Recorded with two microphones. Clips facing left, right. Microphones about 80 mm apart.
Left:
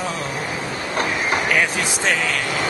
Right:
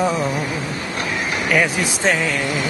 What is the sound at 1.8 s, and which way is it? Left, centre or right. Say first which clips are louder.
Mantra: right 2 dB; right.